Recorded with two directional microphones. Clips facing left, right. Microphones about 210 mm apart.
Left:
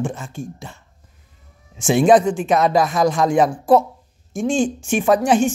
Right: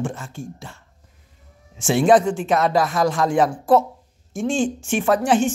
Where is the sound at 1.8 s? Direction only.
15° left (ahead or behind).